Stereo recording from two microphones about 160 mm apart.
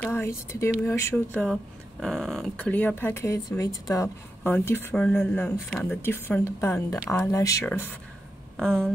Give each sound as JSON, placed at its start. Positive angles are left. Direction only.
{"t": 0.1, "sound": "speech", "side_deg": 15}
{"t": 1.1, "sound": "speech", "side_deg": 5}
{"t": 4.4, "sound": "speech", "side_deg": 10}
{"t": 8.5, "sound": "speech", "side_deg": 5}